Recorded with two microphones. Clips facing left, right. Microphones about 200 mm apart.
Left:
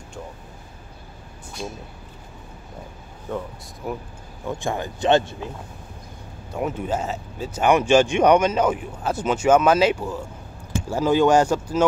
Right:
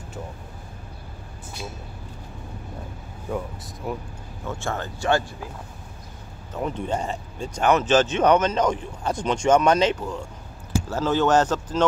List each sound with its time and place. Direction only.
3.3 s speech: 10° right (ahead or behind)
3.8 s speech: centre (ahead or behind)
4.5 s speech: 15° left (ahead or behind)
6.5 s speech: 5° left (ahead or behind)